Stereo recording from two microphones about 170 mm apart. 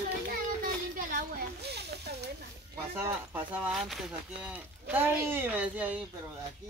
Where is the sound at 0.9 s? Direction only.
65° right (ahead or behind).